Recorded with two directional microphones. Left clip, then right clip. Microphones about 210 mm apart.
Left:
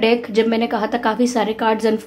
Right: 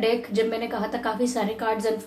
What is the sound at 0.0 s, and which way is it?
A woman's voice, 45° left (ahead or behind).